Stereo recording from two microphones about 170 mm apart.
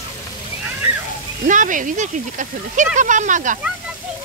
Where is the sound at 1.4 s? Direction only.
50° right (ahead or behind).